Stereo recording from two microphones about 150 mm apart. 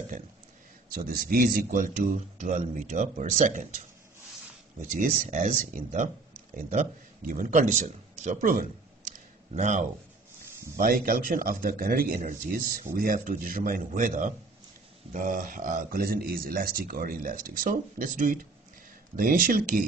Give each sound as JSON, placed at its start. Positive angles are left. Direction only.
{"t": 0.9, "sound": "a man's voice", "side_deg": -75}
{"t": 4.9, "sound": "a man's voice", "side_deg": -60}
{"t": 10.8, "sound": "a man's voice", "side_deg": -70}